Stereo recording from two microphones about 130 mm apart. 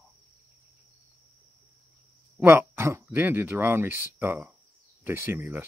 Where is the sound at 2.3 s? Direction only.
15° right (ahead or behind).